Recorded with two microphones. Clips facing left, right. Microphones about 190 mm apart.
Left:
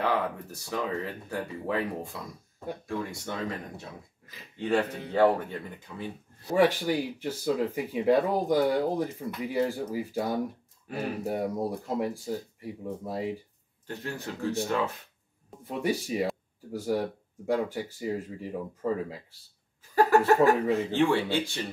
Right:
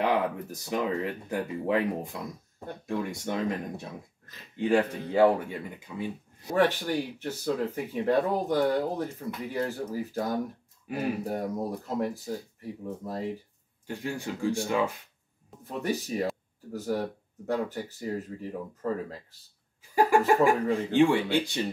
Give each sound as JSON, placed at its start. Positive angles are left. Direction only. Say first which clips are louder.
{"t": 0.0, "sound": "speech", "louder": "right 2 dB", "side_deg": -20}
{"t": 6.5, "sound": "speech", "louder": "left 1 dB", "side_deg": 10}
{"t": 10.9, "sound": "speech", "louder": "right 3 dB", "side_deg": -10}
{"t": 11.2, "sound": "speech", "louder": "left 2 dB", "side_deg": 10}
{"t": 13.8, "sound": "speech", "louder": "right 3 dB", "side_deg": -10}
{"t": 15.6, "sound": "speech", "louder": "left 1 dB", "side_deg": 10}
{"t": 20.0, "sound": "speech", "louder": "left 1 dB", "side_deg": -10}